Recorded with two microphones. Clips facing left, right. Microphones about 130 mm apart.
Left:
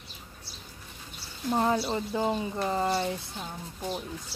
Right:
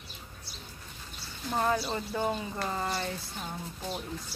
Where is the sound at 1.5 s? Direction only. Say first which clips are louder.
Left 3 dB; 20° left (ahead or behind).